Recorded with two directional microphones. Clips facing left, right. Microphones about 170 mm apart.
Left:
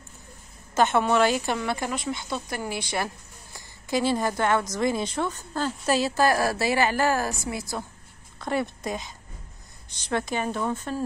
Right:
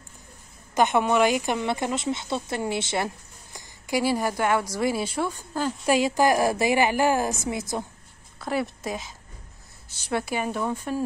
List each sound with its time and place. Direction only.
0.7 s a woman's voice: 15° right (ahead or behind)
3.5 s a woman's voice: 15° right (ahead or behind)
8.4 s a woman's voice: 5° right (ahead or behind)